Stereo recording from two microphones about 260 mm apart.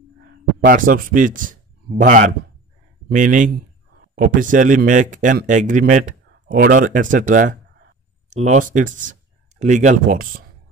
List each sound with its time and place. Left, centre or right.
0.7 s speech: right